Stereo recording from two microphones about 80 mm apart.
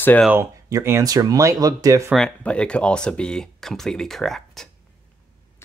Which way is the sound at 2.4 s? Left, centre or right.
Centre.